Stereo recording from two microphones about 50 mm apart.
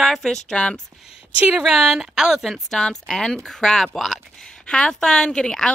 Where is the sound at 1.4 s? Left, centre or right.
Centre.